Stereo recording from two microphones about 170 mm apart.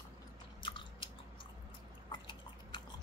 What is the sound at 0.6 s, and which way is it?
Chewing, 30° left (ahead or behind).